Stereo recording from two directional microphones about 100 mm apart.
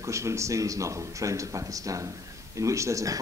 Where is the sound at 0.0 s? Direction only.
30° right (ahead or behind).